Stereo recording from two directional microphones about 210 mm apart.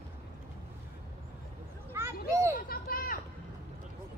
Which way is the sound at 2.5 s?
45° left (ahead or behind).